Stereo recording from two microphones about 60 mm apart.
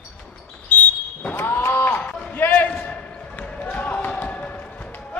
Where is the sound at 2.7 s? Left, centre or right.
Left.